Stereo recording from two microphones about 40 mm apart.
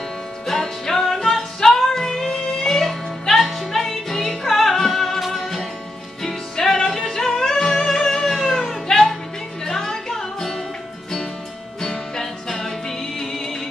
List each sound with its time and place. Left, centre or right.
0.5 s music: centre
11.8 s music: centre